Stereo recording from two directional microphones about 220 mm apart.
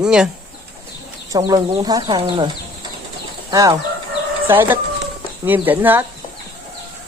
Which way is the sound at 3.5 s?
15° right (ahead or behind).